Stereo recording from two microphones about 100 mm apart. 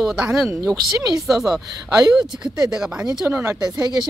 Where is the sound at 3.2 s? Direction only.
25° right (ahead or behind).